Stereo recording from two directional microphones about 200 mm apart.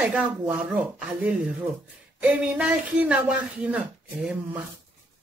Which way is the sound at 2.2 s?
5° right (ahead or behind).